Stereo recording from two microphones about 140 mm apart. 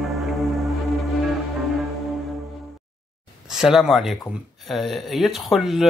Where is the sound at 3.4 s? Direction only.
5° right (ahead or behind).